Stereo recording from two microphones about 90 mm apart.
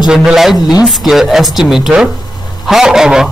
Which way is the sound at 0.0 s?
5° right (ahead or behind).